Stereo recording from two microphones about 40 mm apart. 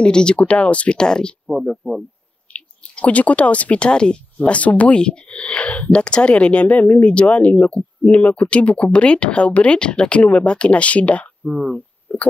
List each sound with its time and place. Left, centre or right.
0.0 s speech: left
0.4 s speech: left
0.9 s speech: left
1.5 s speech: centre
2.5 s speech: left
4.6 s speech: left
12.1 s a sound: left